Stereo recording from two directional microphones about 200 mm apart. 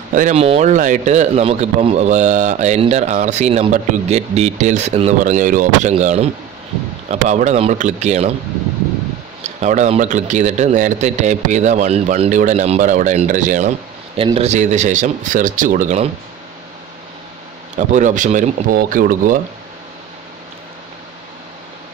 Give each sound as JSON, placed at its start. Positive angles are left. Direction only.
{"t": 0.1, "sound": "a man's voice", "side_deg": -40}
{"t": 9.4, "sound": "a man's voice", "side_deg": -35}
{"t": 17.7, "sound": "a man's voice", "side_deg": -40}